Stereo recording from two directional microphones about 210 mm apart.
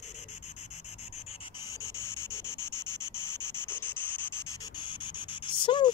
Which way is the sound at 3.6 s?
10° left (ahead or behind).